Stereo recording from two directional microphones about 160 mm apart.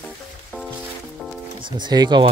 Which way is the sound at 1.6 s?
25° right (ahead or behind).